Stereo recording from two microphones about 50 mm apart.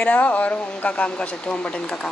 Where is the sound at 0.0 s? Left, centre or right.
Left.